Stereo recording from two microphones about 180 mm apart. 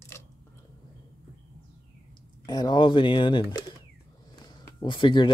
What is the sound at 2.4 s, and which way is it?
Speech, 25° left (ahead or behind).